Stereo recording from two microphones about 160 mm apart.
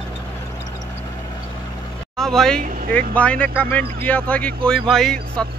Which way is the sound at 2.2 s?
5° left (ahead or behind).